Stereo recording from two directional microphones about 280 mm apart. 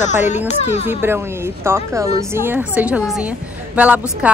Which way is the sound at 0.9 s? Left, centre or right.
Centre.